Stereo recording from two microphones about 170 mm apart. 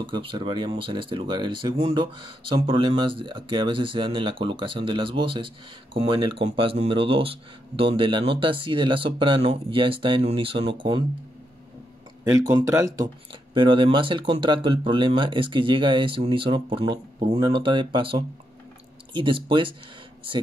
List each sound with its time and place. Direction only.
0.0 s speech: 30° right (ahead or behind)
12.4 s speech: 20° right (ahead or behind)